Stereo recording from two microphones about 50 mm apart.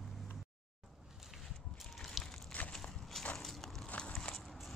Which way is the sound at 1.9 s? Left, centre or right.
Centre.